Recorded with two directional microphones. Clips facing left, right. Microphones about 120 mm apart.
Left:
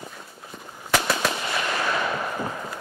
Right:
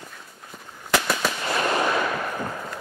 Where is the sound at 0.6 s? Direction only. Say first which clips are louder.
Left 2 dB; 15° left (ahead or behind).